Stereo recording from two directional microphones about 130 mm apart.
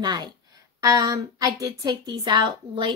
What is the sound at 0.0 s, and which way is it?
A woman's voice, 30° right (ahead or behind).